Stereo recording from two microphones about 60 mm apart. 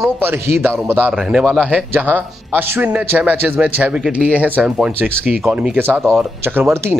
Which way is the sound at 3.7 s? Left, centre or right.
Right.